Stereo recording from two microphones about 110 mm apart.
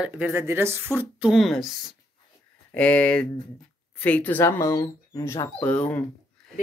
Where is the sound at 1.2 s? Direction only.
Centre (ahead or behind).